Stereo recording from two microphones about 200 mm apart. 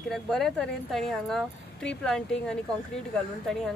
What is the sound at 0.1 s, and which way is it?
Speech, centre (ahead or behind).